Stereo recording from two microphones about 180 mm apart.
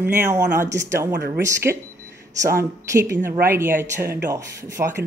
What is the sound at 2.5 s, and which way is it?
Speech, 15° right (ahead or behind).